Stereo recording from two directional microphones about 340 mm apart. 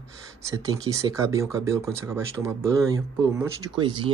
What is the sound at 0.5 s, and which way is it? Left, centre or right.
Speech, centre.